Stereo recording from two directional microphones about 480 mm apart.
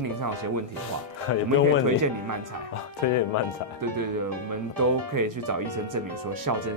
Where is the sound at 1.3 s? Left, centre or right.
Left.